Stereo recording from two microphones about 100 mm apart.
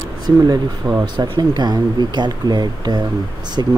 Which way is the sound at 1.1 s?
55° right (ahead or behind).